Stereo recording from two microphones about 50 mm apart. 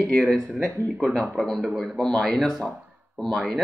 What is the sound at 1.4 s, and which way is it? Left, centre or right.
Speech, centre.